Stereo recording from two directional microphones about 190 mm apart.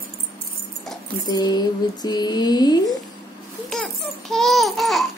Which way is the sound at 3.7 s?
Centre (ahead or behind).